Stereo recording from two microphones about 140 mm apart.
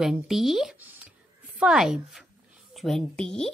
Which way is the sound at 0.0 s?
5° right (ahead or behind).